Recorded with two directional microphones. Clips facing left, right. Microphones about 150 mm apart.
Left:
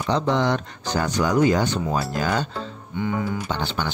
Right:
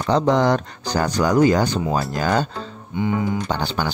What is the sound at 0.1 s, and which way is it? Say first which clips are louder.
Speech: right 4 dB; 40° right (ahead or behind).